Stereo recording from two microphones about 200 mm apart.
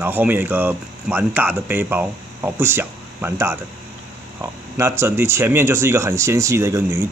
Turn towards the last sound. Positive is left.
turn(degrees=-15)  # may be behind; listen again after turning